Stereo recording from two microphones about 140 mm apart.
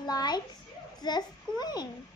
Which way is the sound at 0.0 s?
30° left (ahead or behind).